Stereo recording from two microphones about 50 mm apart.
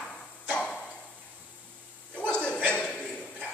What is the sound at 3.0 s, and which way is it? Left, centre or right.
Dishes, left.